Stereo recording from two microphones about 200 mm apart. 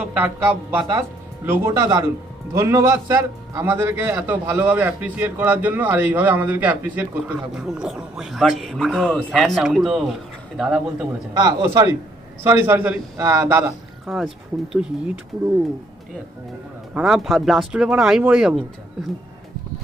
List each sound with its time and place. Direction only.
0.1 s a man's voice: 10° right (ahead or behind)
11.3 s a man's voice: 15° right (ahead or behind)
14.0 s speech: centre (ahead or behind)
16.9 s speech: centre (ahead or behind)